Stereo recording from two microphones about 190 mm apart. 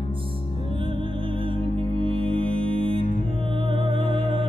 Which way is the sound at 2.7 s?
30° right (ahead or behind).